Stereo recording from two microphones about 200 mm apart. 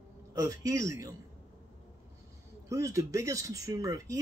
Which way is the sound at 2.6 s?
15° right (ahead or behind).